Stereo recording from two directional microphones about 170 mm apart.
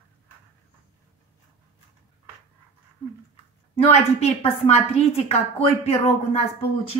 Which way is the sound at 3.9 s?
40° left (ahead or behind).